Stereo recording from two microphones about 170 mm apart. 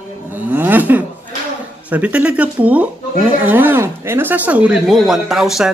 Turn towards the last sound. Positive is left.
turn(degrees=0)  # may be behind; listen again after turning